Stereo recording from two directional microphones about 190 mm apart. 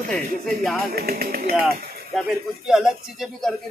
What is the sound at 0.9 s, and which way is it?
Speech, 55° right (ahead or behind).